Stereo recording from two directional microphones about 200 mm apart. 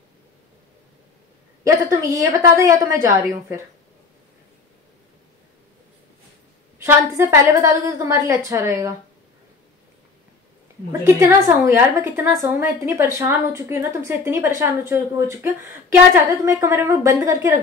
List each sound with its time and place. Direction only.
1.6 s a woman's voice: 15° right (ahead or behind)
6.8 s a woman's voice: 15° right (ahead or behind)
10.9 s a woman's voice: 10° right (ahead or behind)